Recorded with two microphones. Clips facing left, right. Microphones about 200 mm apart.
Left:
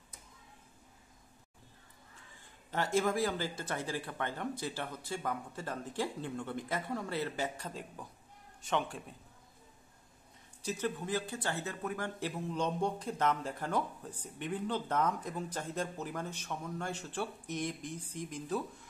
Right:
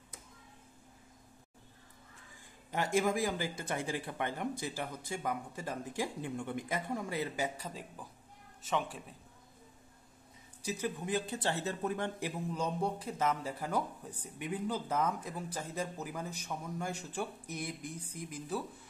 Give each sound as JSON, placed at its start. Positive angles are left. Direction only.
{"t": 2.7, "sound": "a man's voice", "side_deg": -15}
{"t": 10.6, "sound": "speech", "side_deg": -10}
{"t": 12.2, "sound": "speech", "side_deg": -10}